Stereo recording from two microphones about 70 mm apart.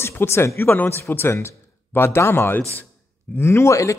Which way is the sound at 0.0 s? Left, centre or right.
Left.